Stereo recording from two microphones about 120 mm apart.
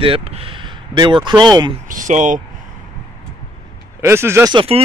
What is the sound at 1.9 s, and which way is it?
Speech, 90° right.